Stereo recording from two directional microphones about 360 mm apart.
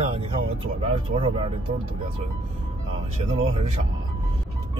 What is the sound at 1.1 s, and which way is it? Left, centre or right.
Speech, right.